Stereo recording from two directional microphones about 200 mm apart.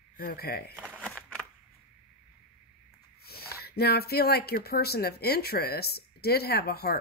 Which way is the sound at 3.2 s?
50° left (ahead or behind).